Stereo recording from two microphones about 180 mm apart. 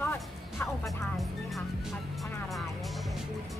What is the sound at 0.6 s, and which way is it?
Speech, 15° left (ahead or behind).